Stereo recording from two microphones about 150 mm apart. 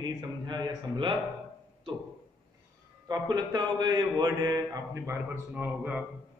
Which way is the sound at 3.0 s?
25° right (ahead or behind).